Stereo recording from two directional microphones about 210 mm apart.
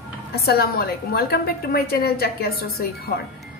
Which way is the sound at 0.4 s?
50° left (ahead or behind).